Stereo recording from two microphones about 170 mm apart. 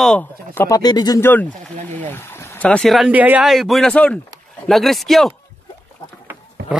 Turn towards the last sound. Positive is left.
turn(degrees=-85)